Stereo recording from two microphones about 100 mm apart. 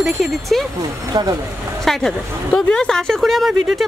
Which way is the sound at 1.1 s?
40° right (ahead or behind).